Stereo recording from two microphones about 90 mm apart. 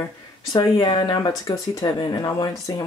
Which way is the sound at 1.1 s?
45° left (ahead or behind).